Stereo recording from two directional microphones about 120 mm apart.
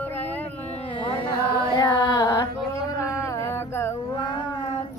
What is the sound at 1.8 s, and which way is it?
Carnatic music, 30° left (ahead or behind).